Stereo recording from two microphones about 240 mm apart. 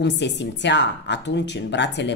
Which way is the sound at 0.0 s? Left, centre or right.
Left.